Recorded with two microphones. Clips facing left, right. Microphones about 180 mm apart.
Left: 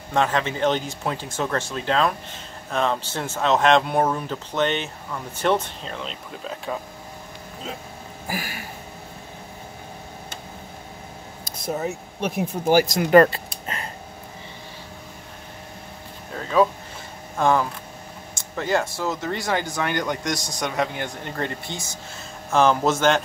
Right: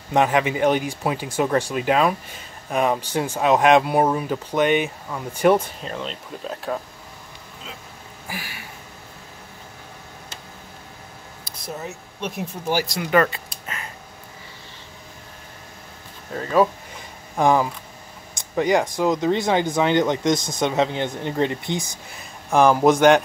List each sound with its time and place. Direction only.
0.1 s speech: 15° right (ahead or behind); by 6.8 s centre (ahead or behind)
8.3 s a sound: 45° left (ahead or behind)
11.4 s speech: 50° left (ahead or behind); by 13.8 s 35° left (ahead or behind)
17.4 s speech: 15° right (ahead or behind)